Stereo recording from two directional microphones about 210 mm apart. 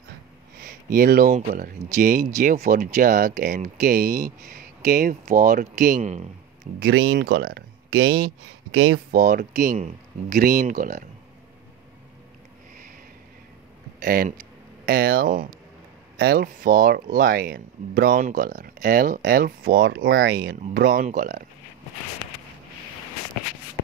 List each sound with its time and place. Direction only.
0.7 s speech: 45° right (ahead or behind)
7.1 s speech: 50° right (ahead or behind)
8.7 s speech: 80° right
9.1 s speech: 40° right (ahead or behind)
14.0 s speech: 45° right (ahead or behind)